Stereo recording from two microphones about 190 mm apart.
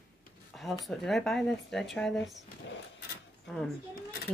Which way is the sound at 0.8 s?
Centre (ahead or behind).